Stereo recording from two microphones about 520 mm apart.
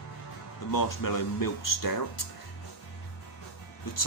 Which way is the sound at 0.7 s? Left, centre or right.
Left.